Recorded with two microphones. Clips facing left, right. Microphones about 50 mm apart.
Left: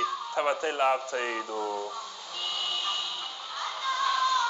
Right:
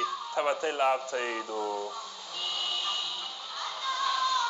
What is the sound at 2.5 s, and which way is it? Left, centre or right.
Vehicle, left.